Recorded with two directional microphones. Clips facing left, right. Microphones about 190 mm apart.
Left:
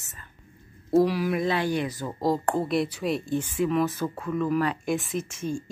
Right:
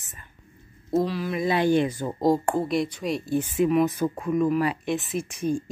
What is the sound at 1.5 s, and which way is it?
Speech, 20° right (ahead or behind).